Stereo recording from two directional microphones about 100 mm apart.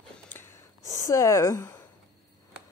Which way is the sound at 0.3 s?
20° left (ahead or behind).